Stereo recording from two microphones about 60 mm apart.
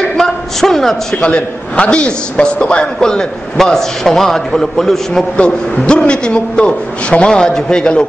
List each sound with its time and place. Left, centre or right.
0.2 s a sound: centre
1.1 s a man's voice: centre
5.4 s a man's voice: centre